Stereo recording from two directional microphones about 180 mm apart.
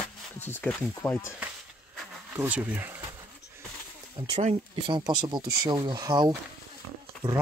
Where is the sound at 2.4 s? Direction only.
10° right (ahead or behind).